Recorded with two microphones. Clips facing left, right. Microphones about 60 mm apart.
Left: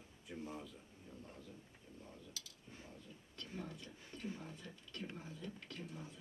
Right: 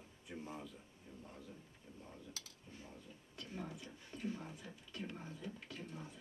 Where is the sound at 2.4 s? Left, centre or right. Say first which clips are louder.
Even; right.